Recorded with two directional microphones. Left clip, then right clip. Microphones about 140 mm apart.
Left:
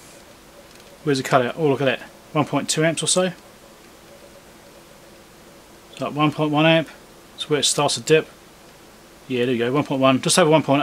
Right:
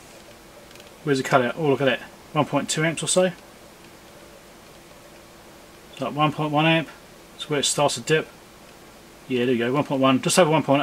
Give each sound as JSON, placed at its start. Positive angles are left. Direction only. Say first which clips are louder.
{"t": 1.0, "sound": "speech", "louder": "left 1 dB", "side_deg": 40}
{"t": 5.9, "sound": "speech", "louder": "left 2 dB", "side_deg": 35}
{"t": 9.3, "sound": "speech", "louder": "left 2 dB", "side_deg": 35}